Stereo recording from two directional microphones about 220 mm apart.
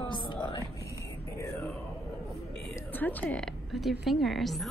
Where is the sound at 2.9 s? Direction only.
10° left (ahead or behind).